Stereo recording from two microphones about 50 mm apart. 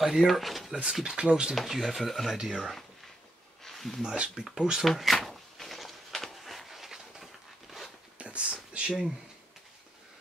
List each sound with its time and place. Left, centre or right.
0.0 s speech: centre
1.0 s speech: centre
1.5 s speech: centre
3.6 s a sound: centre
4.0 s speech: centre
4.8 s a sound: centre
8.2 s whispering: right
8.7 s speech: right